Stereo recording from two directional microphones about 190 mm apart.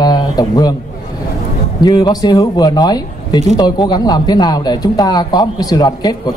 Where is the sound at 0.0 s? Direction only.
20° left (ahead or behind).